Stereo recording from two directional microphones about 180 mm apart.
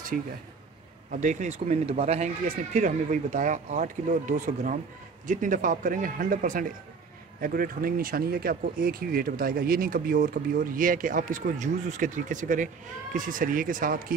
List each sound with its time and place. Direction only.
1.1 s speech: 40° right (ahead or behind)